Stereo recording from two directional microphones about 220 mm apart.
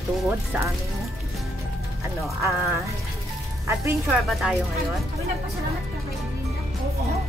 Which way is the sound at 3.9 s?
Centre (ahead or behind).